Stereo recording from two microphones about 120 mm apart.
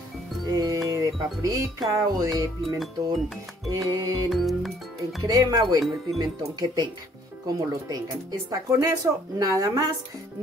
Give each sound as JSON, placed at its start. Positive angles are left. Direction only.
{"t": 0.5, "sound": "speech", "side_deg": -30}
{"t": 3.7, "sound": "speech", "side_deg": -30}
{"t": 4.3, "sound": "speech", "side_deg": 0}
{"t": 5.3, "sound": "speech", "side_deg": -30}